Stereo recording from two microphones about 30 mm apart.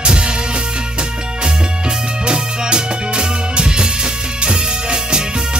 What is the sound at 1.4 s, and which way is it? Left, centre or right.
Music, right.